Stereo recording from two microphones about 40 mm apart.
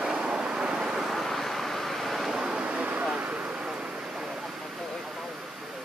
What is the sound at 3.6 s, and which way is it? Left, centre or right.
Vehicle, right.